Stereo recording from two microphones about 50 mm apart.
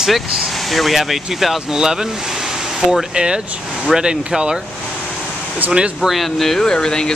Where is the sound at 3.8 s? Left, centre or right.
Centre.